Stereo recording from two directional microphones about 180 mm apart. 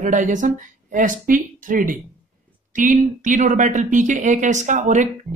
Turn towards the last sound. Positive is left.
turn(degrees=-45)  # may be behind; listen again after turning